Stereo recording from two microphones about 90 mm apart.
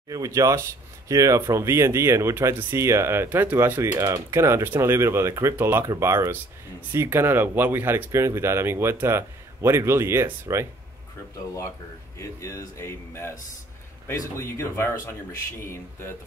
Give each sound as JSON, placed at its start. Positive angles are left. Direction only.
{"t": 0.1, "sound": "speech", "side_deg": -40}
{"t": 4.0, "sound": "speech", "side_deg": -35}
{"t": 12.2, "sound": "speech", "side_deg": 35}